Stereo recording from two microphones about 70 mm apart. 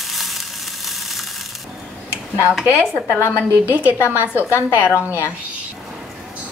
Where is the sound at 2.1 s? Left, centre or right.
Left.